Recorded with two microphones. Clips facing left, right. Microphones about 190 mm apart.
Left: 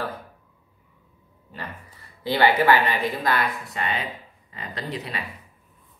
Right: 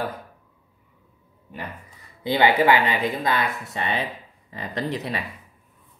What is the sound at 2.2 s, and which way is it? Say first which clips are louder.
Speech: right 1 dB; 15° right (ahead or behind).